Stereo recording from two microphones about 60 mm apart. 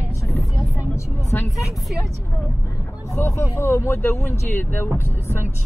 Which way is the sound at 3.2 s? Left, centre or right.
Left.